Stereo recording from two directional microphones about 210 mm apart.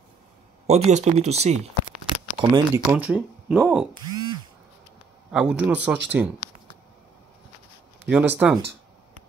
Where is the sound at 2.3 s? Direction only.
15° right (ahead or behind).